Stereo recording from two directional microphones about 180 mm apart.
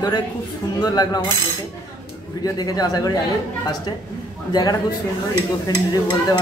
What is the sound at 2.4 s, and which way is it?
Stir, 20° left (ahead or behind).